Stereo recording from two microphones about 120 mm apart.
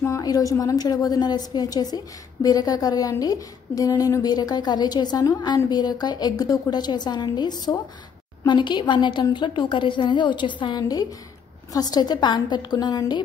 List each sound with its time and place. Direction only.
0.0 s a woman's voice: 30° left (ahead or behind)